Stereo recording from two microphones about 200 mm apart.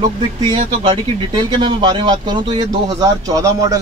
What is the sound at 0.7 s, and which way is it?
Speech, 25° right (ahead or behind).